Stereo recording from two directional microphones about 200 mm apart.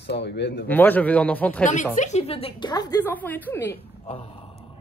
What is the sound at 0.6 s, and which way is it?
Speech, 10° left (ahead or behind).